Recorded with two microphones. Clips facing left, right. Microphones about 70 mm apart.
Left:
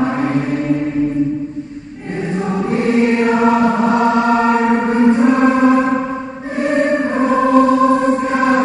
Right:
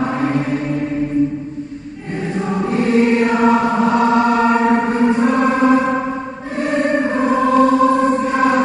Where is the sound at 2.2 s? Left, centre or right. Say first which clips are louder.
Left 1 dB; centre.